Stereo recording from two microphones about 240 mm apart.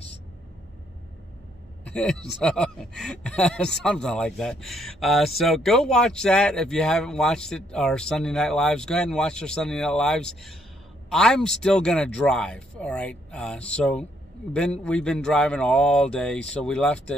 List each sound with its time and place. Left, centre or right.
1.9 s speech: centre